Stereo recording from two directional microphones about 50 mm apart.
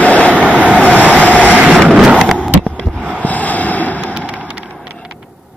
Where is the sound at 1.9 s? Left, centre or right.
Centre.